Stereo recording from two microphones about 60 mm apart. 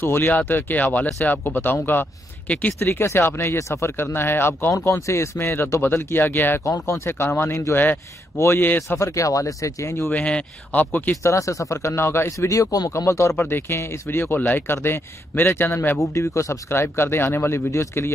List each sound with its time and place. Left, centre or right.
0.0 s speech: left
3.5 s speech: left
6.6 s speech: left
7.2 s speech: left
9.1 s speech: left
10.1 s speech: left
11.2 s speech: left
12.9 s speech: left
13.4 s speech: left
16.0 s speech: left